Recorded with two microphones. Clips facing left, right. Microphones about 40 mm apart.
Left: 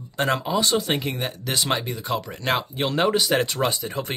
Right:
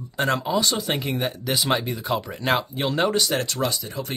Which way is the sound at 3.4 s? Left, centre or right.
Left.